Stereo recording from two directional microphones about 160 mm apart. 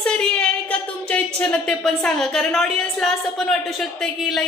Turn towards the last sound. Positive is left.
turn(degrees=5)  # may be behind; listen again after turning